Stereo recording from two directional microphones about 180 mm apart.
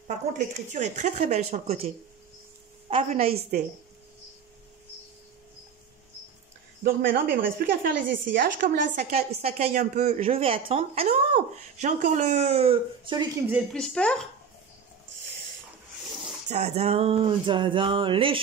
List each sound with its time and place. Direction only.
0.1 s speech: 40° right (ahead or behind)
2.9 s a woman's voice: 30° right (ahead or behind)
3.2 s a woman's voice: 55° right (ahead or behind)
6.8 s speech: 60° right (ahead or behind); by 13.3 s 25° right (ahead or behind)
13.7 s speech: 5° left (ahead or behind)
16.4 s a sound: 35° right (ahead or behind)